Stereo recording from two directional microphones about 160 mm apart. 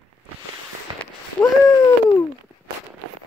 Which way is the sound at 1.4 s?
15° left (ahead or behind).